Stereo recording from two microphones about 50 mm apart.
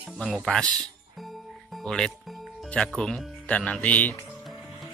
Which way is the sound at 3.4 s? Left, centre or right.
Left.